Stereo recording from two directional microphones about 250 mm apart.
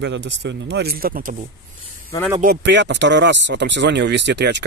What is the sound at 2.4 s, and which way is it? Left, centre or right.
Speech, right.